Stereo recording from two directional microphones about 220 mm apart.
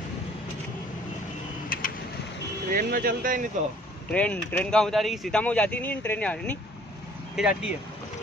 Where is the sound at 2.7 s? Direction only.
40° right (ahead or behind).